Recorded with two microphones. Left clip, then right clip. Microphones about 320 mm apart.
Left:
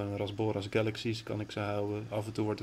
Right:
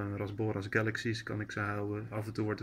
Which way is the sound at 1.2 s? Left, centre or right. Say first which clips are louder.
Even; left.